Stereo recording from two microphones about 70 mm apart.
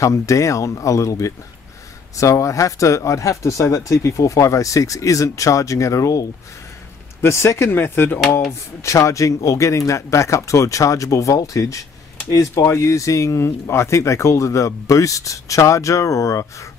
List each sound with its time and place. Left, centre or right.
0.0 s speech: left
8.5 s speech: left